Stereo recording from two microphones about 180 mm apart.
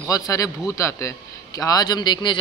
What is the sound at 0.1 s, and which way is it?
A man's voice, 20° left (ahead or behind).